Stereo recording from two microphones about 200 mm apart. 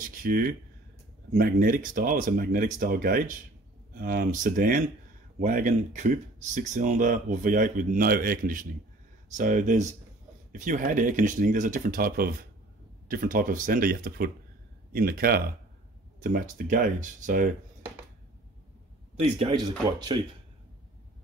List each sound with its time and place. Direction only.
0.0 s speech: 45° right (ahead or behind)
19.3 s speech: 25° right (ahead or behind)